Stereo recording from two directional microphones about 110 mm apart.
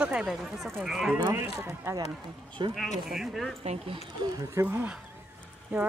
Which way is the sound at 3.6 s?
60° right (ahead or behind).